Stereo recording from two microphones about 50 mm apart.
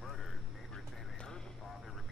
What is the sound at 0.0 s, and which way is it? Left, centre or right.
Vehicle, centre.